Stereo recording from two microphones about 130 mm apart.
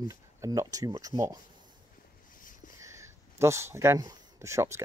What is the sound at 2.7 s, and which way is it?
Speech, 20° right (ahead or behind).